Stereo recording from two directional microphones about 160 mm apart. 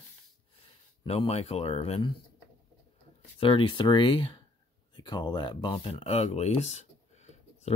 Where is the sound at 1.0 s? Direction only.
35° left (ahead or behind).